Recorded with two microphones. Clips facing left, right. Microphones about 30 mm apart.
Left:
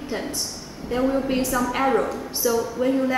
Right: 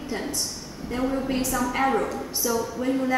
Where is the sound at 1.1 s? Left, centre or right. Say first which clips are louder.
Left 2 dB; left.